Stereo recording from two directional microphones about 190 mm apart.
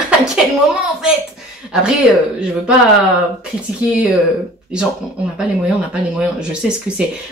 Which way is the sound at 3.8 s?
5° right (ahead or behind).